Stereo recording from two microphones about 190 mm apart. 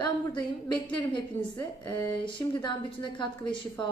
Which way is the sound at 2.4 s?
25° left (ahead or behind).